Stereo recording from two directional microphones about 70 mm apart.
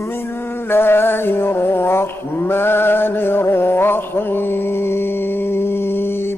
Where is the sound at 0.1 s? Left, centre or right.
Left.